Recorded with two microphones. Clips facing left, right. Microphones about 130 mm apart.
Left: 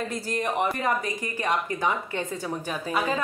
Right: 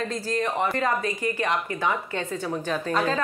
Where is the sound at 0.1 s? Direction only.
15° left (ahead or behind).